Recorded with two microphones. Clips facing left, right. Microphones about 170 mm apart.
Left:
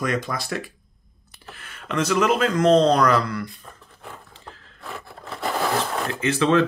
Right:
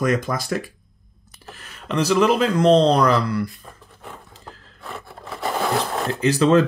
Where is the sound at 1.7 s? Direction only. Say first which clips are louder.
Right 2 dB; centre (ahead or behind).